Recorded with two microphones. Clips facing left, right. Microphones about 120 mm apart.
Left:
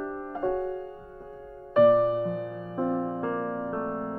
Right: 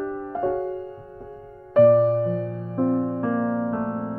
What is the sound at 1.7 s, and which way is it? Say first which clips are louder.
Music: right 4 dB; 5° left (ahead or behind).